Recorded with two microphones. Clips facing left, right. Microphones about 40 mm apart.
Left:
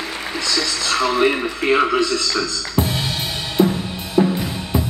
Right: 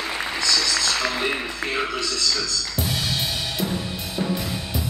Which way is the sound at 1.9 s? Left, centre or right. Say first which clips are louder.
Left 6 dB; left.